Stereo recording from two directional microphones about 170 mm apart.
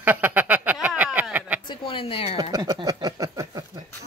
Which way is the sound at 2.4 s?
20° right (ahead or behind).